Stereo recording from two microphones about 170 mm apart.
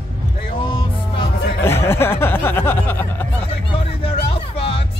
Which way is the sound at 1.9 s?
15° left (ahead or behind).